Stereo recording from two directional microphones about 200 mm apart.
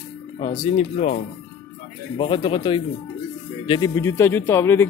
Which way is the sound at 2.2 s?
25° left (ahead or behind).